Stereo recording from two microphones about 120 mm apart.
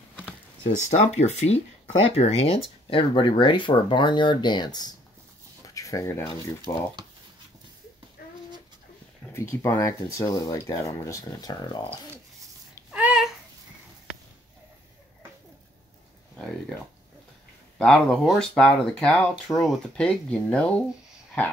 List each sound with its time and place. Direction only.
0.8 s speech: 70° left (ahead or behind); by 2.6 s 55° left (ahead or behind)
2.9 s speech: 45° left (ahead or behind)
9.3 s speech: 25° left (ahead or behind)
12.9 s babbling: 10° right (ahead or behind)
16.3 s a sound: 5° left (ahead or behind)
17.7 s speech: 5° left (ahead or behind)
18.5 s speech: 10° left (ahead or behind)